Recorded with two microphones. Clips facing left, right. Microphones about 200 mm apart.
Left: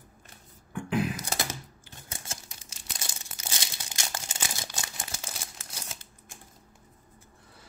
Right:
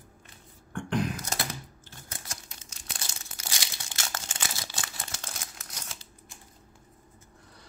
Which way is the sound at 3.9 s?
15° left (ahead or behind).